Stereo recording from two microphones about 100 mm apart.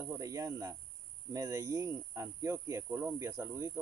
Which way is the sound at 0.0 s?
30° right (ahead or behind).